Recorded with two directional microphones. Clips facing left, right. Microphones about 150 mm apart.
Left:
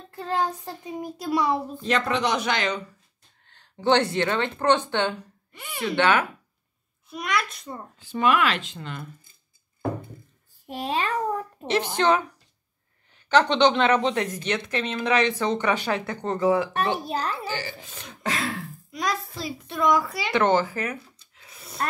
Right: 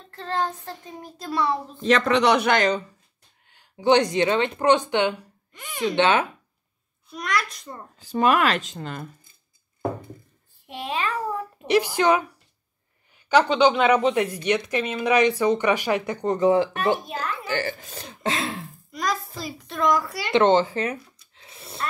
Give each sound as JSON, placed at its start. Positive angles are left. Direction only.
{"t": 0.1, "sound": "speech", "side_deg": 10}
{"t": 1.8, "sound": "speech", "side_deg": -90}
{"t": 3.4, "sound": "speech", "side_deg": -10}
{"t": 7.1, "sound": "a child's voice", "side_deg": 0}
{"t": 8.0, "sound": "speech", "side_deg": -40}
{"t": 10.7, "sound": "a child's voice", "side_deg": 40}
{"t": 11.1, "sound": "a woman's voice", "side_deg": -10}
{"t": 17.0, "sound": "a child's voice", "side_deg": 35}
{"t": 17.5, "sound": "speech", "side_deg": -55}
{"t": 17.9, "sound": "speech", "side_deg": -30}
{"t": 18.9, "sound": "a child's voice", "side_deg": 0}
{"t": 20.3, "sound": "a sound", "side_deg": -25}